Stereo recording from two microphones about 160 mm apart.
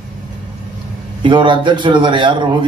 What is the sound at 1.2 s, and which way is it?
A man's voice, 30° right (ahead or behind).